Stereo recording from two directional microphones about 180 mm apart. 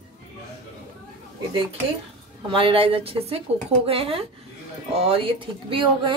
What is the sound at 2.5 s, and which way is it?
A woman's voice, 30° right (ahead or behind).